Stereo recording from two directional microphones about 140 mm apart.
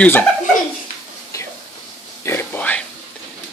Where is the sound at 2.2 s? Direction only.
15° left (ahead or behind).